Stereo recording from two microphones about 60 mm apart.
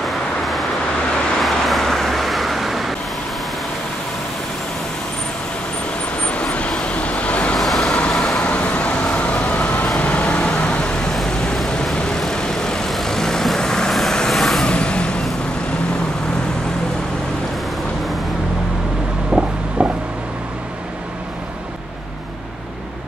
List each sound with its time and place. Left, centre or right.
0.0 s vehicle: centre
6.2 s vehicle: centre
7.5 s vehicle: centre
8.5 s vehicle: left; by 14.7 s centre
14.7 s vehicle: centre
19.3 s a sound: centre